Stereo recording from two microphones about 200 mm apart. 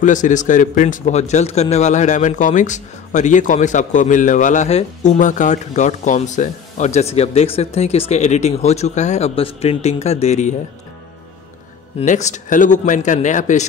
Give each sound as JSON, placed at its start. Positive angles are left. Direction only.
{"t": 0.0, "sound": "a man's voice", "side_deg": 40}
{"t": 12.0, "sound": "a man's voice", "side_deg": 35}